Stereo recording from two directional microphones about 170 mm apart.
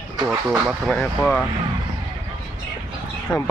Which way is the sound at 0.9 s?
10° left (ahead or behind).